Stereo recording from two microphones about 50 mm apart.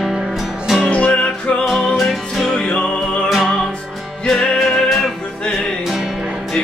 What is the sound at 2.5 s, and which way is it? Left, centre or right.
Music, left.